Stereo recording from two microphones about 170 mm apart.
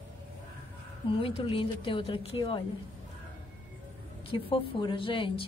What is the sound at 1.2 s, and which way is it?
Speech, 30° left (ahead or behind).